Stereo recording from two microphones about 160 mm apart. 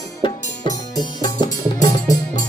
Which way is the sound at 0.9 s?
25° left (ahead or behind).